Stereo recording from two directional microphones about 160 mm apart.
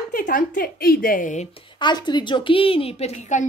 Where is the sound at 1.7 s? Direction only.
30° left (ahead or behind); by 3.5 s 50° left (ahead or behind).